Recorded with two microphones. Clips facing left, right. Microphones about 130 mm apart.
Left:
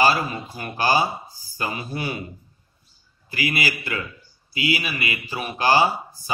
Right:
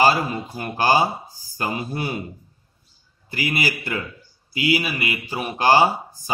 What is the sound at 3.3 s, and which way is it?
Speech, 40° right (ahead or behind).